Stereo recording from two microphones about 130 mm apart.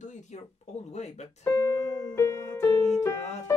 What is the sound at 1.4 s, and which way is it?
Keyboard, 25° left (ahead or behind).